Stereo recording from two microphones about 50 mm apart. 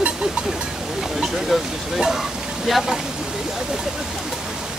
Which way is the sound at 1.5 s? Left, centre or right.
Centre.